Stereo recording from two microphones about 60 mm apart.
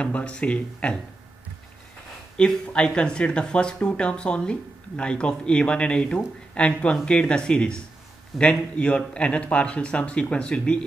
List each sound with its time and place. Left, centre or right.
0.0 s speech: centre
2.3 s speech: centre